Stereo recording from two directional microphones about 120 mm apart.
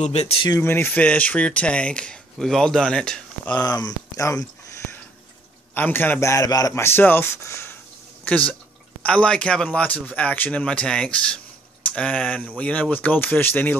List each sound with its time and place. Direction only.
0.0 s speech: 65° left (ahead or behind)
0.6 s speech: 20° left (ahead or behind)
3.6 s speech: 35° left (ahead or behind)
5.8 s speech: 15° left (ahead or behind)
9.0 s speech: 10° left (ahead or behind)